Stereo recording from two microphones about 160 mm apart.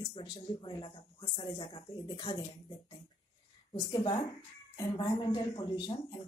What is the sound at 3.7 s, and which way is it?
A woman's voice, 30° left (ahead or behind).